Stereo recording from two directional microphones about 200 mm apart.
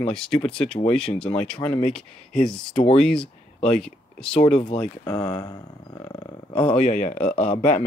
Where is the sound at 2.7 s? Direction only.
30° left (ahead or behind).